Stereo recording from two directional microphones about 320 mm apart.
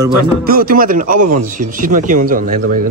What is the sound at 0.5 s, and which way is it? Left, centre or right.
A man's voice, right.